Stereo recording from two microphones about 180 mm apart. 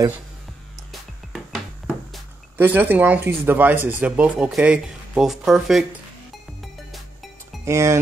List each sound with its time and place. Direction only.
2.5 s speech: 10° right (ahead or behind)
7.6 s speech: 15° right (ahead or behind)